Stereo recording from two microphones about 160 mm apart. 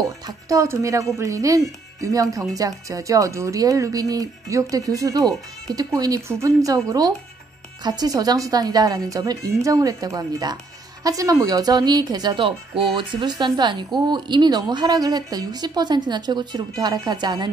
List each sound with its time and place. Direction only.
0.5 s a woman's voice: 20° right (ahead or behind)